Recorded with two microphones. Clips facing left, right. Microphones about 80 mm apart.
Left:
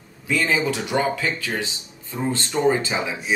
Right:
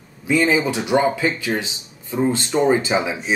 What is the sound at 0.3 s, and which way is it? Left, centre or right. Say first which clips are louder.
Speech: right 4 dB; centre.